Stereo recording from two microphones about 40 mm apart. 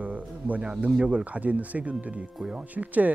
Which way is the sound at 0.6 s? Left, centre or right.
Right.